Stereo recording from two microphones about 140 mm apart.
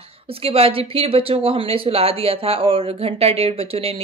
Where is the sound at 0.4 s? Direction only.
45° right (ahead or behind).